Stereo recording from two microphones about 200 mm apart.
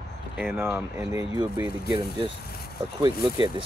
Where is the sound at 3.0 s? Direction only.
20° right (ahead or behind).